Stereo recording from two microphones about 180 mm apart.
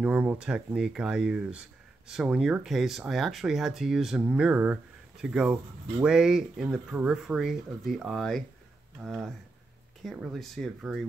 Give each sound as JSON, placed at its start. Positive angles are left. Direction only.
{"t": 0.0, "sound": "speech", "side_deg": -10}